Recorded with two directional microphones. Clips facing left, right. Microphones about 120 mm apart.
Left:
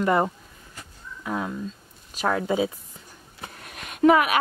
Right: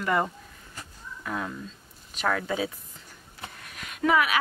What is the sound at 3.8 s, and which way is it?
Speech, 25° left (ahead or behind).